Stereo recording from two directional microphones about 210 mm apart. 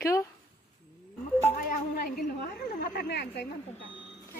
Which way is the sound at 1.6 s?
45° left (ahead or behind).